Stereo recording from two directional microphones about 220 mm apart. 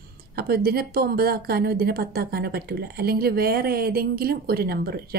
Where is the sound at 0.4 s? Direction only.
45° right (ahead or behind).